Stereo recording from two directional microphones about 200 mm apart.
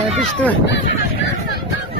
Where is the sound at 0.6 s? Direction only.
60° left (ahead or behind).